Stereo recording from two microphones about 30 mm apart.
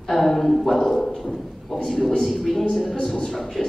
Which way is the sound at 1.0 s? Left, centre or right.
Centre.